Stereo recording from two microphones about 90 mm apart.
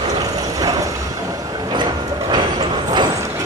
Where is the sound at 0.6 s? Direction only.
40° right (ahead or behind).